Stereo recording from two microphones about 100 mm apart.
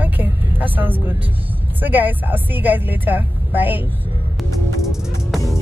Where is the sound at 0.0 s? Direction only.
20° right (ahead or behind).